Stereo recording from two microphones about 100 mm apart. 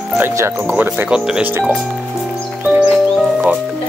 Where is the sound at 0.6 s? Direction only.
15° right (ahead or behind).